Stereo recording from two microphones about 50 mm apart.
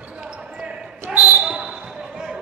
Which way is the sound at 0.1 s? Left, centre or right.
Centre.